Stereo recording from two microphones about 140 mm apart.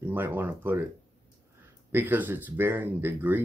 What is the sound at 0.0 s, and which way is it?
Speech, 15° right (ahead or behind).